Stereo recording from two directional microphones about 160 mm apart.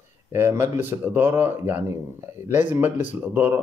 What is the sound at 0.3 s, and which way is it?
Speech, 15° right (ahead or behind).